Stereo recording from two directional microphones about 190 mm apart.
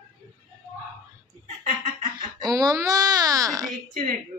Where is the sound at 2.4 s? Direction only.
20° right (ahead or behind).